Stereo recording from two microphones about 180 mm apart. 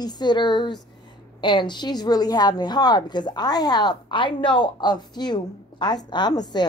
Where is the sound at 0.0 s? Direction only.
25° left (ahead or behind).